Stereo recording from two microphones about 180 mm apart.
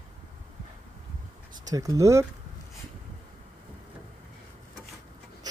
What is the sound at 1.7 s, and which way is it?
Speech, 20° right (ahead or behind).